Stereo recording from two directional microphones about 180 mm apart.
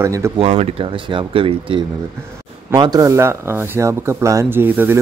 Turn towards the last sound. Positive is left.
turn(degrees=-10)  # may be behind; listen again after turning